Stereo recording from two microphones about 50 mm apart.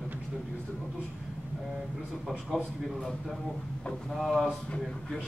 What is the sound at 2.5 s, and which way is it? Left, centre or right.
Speech, centre.